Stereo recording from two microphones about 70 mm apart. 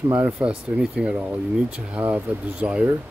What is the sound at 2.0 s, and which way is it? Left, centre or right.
Speech, right.